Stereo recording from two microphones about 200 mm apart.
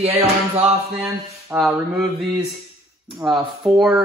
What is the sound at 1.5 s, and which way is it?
Speech, 5° right (ahead or behind).